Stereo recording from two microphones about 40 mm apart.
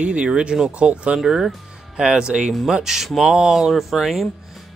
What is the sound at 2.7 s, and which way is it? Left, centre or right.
Speech, centre.